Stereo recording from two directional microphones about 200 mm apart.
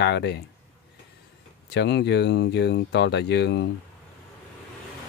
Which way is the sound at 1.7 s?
55° left (ahead or behind).